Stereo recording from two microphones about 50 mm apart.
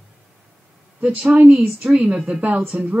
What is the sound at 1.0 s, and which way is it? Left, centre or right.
Speech, right.